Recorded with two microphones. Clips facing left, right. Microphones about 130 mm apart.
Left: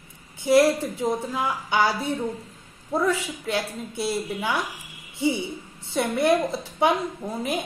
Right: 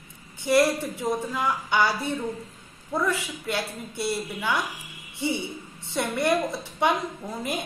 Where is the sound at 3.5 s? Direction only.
15° left (ahead or behind).